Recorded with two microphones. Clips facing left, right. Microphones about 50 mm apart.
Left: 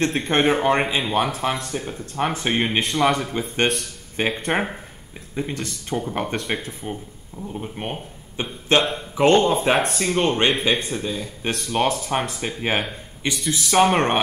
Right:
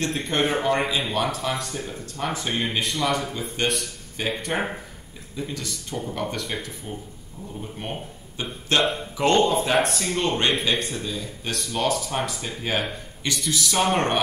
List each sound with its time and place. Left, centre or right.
0.5 s speech: left